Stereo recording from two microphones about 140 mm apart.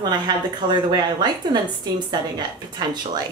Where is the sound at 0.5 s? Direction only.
30° right (ahead or behind).